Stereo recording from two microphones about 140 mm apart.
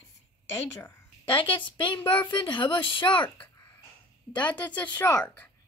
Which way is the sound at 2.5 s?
35° left (ahead or behind).